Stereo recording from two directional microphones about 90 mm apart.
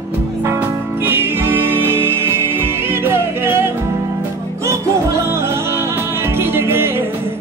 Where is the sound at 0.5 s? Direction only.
25° right (ahead or behind).